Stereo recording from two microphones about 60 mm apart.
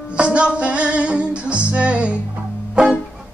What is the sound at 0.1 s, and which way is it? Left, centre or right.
Music, centre.